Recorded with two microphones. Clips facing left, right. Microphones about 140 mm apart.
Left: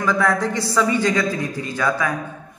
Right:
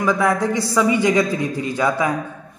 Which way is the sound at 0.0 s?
15° right (ahead or behind).